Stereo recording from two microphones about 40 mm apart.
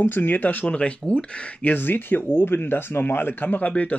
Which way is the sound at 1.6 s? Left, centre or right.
Left.